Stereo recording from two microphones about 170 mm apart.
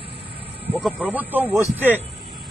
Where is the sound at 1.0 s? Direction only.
10° right (ahead or behind).